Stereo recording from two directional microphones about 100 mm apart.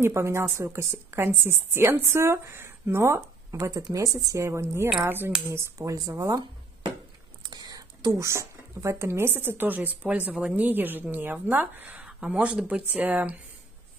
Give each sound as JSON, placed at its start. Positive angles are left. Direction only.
{"t": 0.0, "sound": "speech", "side_deg": -25}
{"t": 7.4, "sound": "speech", "side_deg": -40}